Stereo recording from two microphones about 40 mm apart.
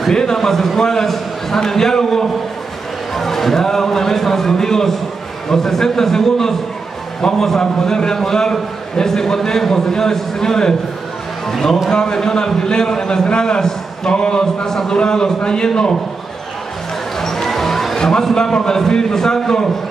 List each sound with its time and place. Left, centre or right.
0.1 s a man's voice: centre
17.2 s music: centre
17.9 s a man's voice: centre